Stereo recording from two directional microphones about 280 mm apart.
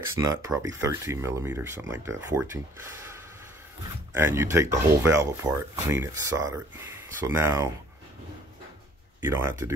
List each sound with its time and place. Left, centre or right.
0.0 s speech: centre
9.2 s speech: centre